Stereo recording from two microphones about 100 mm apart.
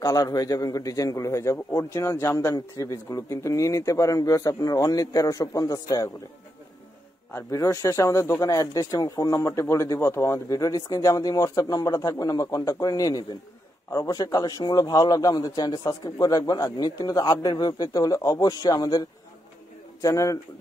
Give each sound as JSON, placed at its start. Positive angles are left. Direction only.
{"t": 0.0, "sound": "a man's voice", "side_deg": 40}
{"t": 7.3, "sound": "a man's voice", "side_deg": 30}